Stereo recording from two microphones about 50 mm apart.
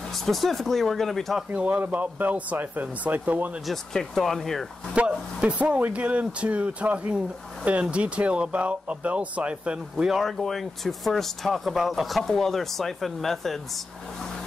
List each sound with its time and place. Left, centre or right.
0.1 s speech: centre
1.5 s speech: right
3.6 s speech: centre
4.9 s speech: right
10.0 s speech: centre